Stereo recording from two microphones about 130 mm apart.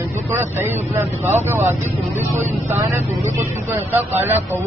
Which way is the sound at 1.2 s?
20° right (ahead or behind).